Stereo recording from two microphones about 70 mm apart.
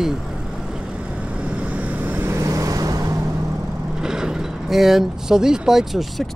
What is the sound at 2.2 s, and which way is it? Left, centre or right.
Vehicle, right.